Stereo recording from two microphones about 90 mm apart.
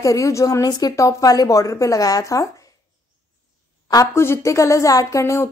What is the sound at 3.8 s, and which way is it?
Speech, 35° left (ahead or behind).